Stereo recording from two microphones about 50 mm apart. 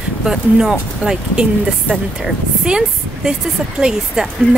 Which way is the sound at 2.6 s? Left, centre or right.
Centre.